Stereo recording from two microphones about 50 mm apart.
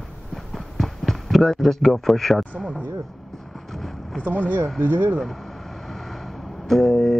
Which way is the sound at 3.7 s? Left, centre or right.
Centre.